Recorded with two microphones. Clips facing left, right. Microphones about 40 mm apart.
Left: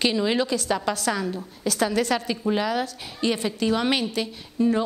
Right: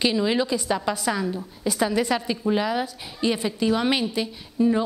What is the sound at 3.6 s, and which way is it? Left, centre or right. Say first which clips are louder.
Speech: right 1 dB; left.